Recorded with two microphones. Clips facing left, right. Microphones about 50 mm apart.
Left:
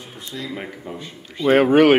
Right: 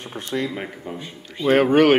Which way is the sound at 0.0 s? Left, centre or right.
Right.